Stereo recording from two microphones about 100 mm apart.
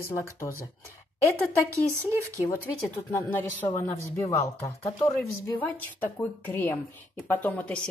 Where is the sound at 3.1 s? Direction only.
20° left (ahead or behind).